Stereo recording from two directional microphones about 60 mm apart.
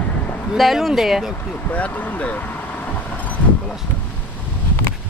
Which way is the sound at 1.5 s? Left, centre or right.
Left.